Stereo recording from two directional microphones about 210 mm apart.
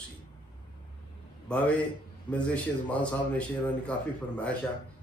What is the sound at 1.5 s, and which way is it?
Speech, 5° left (ahead or behind).